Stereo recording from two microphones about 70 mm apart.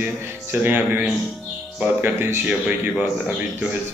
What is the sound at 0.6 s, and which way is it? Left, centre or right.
A man's voice, right.